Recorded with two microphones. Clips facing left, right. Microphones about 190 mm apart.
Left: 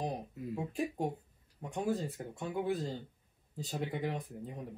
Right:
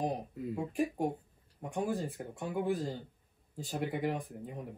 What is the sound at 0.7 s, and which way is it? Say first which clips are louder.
Speech: right 3 dB; 10° right (ahead or behind).